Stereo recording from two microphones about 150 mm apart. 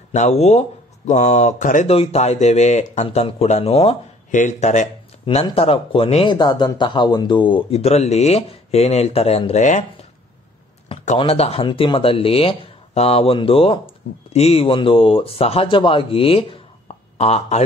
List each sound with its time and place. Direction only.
0.1 s speech: 50° left (ahead or behind)
1.9 s speech: 45° left (ahead or behind)
4.3 s speech: 55° left (ahead or behind)
5.2 s speech: 35° left (ahead or behind)
6.3 s speech: 30° left (ahead or behind); by 9.8 s 50° left (ahead or behind)
11.1 s speech: 40° left (ahead or behind)